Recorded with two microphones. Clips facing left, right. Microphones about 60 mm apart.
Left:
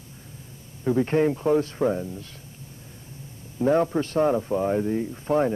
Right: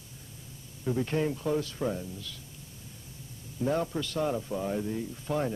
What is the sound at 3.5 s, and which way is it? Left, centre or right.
A man's voice, left.